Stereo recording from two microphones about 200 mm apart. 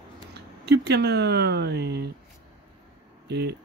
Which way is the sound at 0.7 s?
55° right (ahead or behind).